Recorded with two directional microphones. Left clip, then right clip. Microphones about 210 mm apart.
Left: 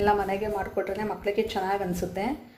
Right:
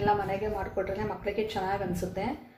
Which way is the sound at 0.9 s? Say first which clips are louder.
Left 4 dB; 50° left (ahead or behind).